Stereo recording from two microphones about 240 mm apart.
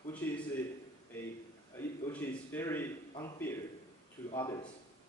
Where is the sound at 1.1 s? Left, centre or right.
Centre.